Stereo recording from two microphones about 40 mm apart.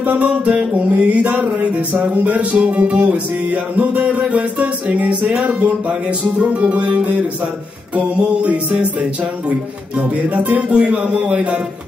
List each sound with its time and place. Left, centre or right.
0.0 s music: right
8.2 s music: right